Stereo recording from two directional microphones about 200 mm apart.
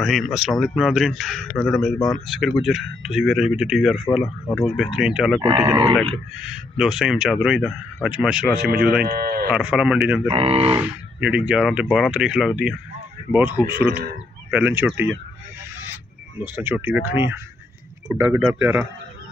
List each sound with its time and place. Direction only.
0.0 s speech: centre (ahead or behind)
9.0 s speech: 50° right (ahead or behind)
9.5 s speech: 5° right (ahead or behind)
10.3 s speech: 30° right (ahead or behind)
10.8 s speech: 5° right (ahead or behind)
16.5 s speech: 10° right (ahead or behind)